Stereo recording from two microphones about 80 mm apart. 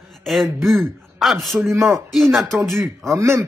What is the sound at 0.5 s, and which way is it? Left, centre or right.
Speech, right.